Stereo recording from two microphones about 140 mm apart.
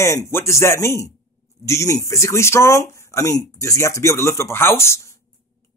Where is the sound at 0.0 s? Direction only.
20° left (ahead or behind).